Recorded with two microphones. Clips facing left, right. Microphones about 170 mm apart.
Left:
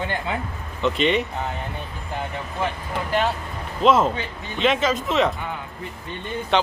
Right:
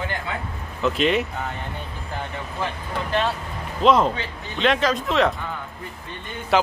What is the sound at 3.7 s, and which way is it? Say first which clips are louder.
Speech: even; centre (ahead or behind).